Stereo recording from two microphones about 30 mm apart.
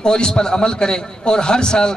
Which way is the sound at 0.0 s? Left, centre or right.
Left.